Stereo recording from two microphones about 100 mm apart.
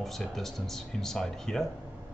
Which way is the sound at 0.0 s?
Centre (ahead or behind).